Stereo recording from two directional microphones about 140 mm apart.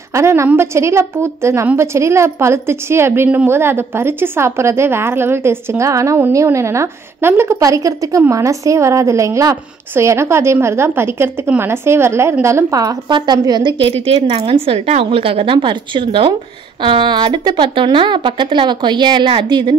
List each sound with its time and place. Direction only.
0.1 s a woman's voice: 20° right (ahead or behind); by 19.8 s 35° right (ahead or behind)